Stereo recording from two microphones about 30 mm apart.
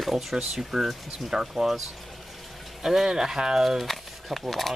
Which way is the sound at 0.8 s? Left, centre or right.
Centre.